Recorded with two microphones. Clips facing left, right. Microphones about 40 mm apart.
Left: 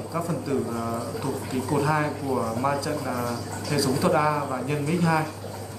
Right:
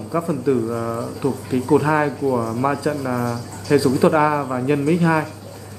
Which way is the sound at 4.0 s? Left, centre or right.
Right.